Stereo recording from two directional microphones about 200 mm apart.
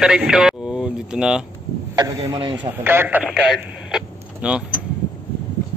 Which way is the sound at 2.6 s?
10° right (ahead or behind).